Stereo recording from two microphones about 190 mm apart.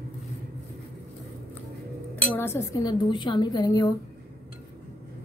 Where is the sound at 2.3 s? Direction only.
15° left (ahead or behind).